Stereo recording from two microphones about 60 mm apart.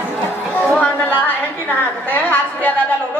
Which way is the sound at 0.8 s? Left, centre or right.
Left.